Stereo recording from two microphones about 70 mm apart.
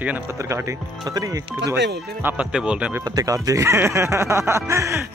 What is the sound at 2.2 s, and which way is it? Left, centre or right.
Speech, centre.